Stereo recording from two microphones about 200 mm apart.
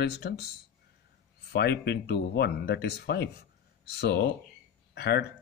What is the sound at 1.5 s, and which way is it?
Speech, 55° left (ahead or behind).